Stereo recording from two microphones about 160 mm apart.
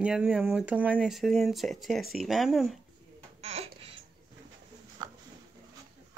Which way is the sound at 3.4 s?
40° right (ahead or behind).